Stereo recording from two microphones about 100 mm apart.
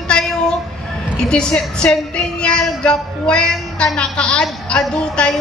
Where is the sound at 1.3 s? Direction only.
10° left (ahead or behind).